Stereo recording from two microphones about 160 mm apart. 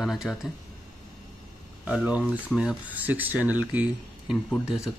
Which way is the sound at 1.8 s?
10° right (ahead or behind).